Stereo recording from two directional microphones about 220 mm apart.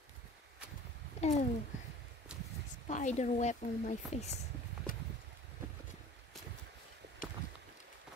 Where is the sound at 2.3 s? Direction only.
5° right (ahead or behind).